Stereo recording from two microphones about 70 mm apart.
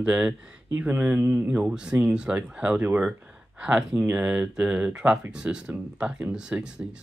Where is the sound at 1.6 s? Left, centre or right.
Centre.